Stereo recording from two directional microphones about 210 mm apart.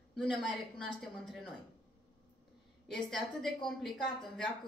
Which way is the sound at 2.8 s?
5° left (ahead or behind).